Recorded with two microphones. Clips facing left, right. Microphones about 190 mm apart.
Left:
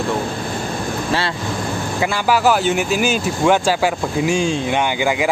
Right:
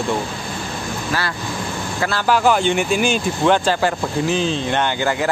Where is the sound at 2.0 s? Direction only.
10° left (ahead or behind).